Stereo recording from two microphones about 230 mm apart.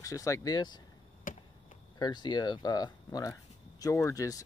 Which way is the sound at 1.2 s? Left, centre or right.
Left.